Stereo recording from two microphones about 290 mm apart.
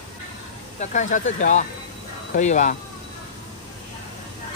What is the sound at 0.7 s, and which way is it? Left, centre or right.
Speech, left.